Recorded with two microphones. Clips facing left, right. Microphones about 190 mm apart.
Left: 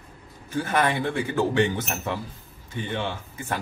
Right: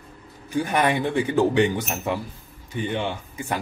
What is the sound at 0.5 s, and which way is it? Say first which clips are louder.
Speech: right 2 dB; 15° right (ahead or behind).